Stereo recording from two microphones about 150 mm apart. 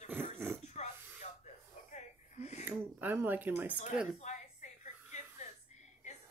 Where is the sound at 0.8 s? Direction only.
50° left (ahead or behind).